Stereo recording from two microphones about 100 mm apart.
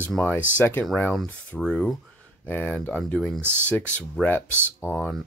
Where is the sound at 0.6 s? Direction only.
15° left (ahead or behind).